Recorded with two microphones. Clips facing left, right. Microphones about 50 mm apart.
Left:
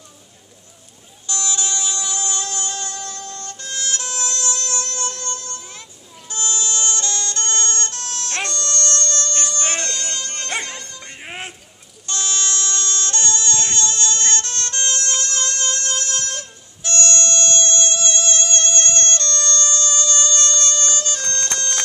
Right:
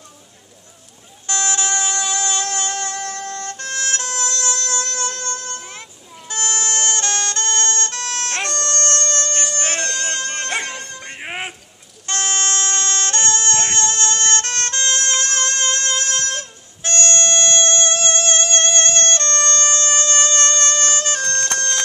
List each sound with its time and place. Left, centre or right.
1.2 s music: right
12.1 s music: right